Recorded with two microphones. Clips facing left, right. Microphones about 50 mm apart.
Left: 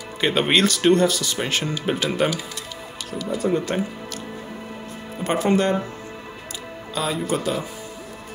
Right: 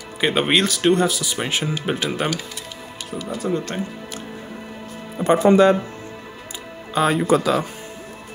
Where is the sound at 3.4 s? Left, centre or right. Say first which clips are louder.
Left 2 dB; centre.